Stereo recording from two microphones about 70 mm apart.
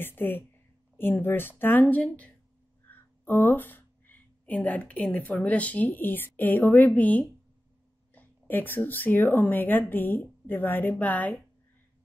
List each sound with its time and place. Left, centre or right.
0.0 s speech: left